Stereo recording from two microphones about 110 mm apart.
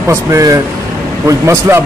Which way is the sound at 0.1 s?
30° right (ahead or behind).